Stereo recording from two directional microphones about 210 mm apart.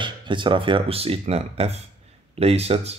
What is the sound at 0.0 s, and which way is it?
Speech, 20° right (ahead or behind).